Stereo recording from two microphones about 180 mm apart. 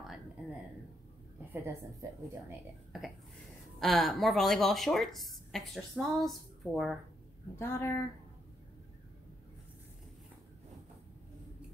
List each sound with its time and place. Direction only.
1.5 s a woman's voice: 15° right (ahead or behind)
2.9 s a woman's voice: 5° right (ahead or behind)
7.5 s speech: 15° left (ahead or behind)